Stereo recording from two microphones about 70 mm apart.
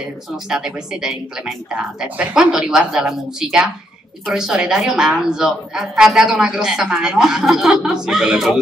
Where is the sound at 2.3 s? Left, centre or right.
Centre.